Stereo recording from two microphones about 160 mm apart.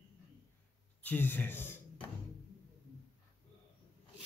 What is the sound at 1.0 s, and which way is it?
Speech, 10° left (ahead or behind).